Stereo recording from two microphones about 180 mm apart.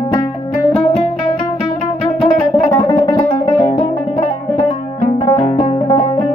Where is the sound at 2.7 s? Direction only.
20° left (ahead or behind).